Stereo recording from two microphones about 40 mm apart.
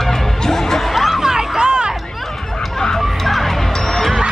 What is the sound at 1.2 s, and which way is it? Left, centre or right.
Music, centre.